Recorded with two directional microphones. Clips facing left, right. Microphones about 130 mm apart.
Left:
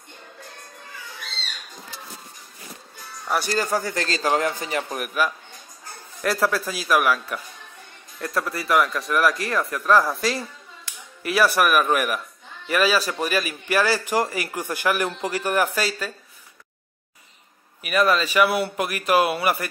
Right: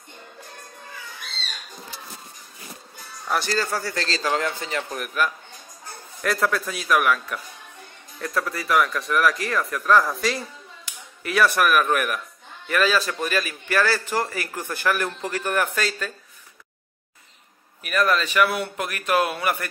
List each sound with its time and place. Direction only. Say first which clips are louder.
3.3 s a man's voice: left 1 dB; 15° left (ahead or behind)
17.8 s a man's voice: left 2 dB; 10° left (ahead or behind)